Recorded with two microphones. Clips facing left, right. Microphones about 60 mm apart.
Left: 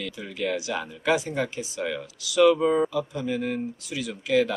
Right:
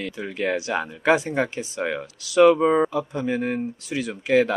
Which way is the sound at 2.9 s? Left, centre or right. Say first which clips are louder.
Right 3 dB; right.